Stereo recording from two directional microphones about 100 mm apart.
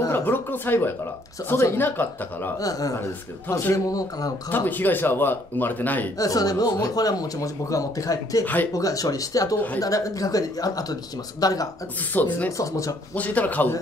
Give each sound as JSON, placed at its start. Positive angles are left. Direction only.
{"t": 0.1, "sound": "speech", "side_deg": 20}
{"t": 2.6, "sound": "speech", "side_deg": 35}
{"t": 4.5, "sound": "speech", "side_deg": 20}
{"t": 6.1, "sound": "speech", "side_deg": 35}
{"t": 12.1, "sound": "speech", "side_deg": 15}
{"t": 12.4, "sound": "speech", "side_deg": 35}
{"t": 13.1, "sound": "speech", "side_deg": 15}